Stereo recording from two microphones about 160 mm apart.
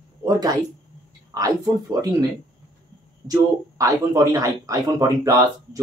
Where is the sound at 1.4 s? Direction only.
20° right (ahead or behind).